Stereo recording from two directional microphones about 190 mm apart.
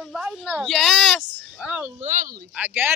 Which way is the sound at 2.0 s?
40° right (ahead or behind).